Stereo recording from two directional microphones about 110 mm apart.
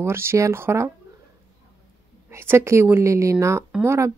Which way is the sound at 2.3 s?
25° right (ahead or behind).